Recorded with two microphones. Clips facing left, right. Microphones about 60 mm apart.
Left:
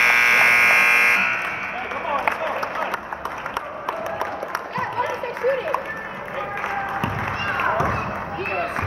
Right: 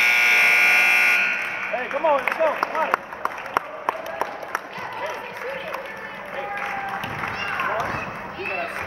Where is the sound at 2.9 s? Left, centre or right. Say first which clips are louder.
Right 3 dB; right.